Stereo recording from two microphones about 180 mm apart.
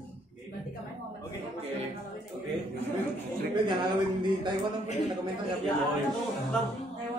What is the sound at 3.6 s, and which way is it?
Speech, 25° right (ahead or behind).